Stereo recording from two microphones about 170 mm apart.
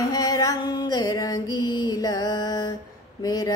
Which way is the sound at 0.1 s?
20° left (ahead or behind).